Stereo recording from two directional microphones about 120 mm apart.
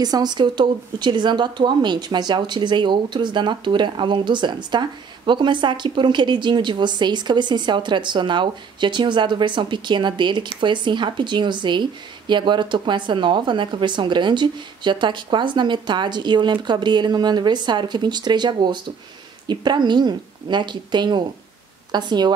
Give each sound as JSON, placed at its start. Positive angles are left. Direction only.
{"t": 0.0, "sound": "speech", "side_deg": -35}